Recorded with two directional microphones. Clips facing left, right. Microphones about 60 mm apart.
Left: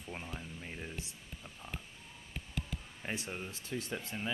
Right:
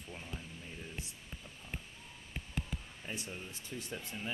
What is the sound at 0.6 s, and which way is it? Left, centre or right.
Speech, left.